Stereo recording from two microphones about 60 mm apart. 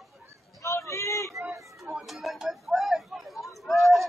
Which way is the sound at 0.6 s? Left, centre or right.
Left.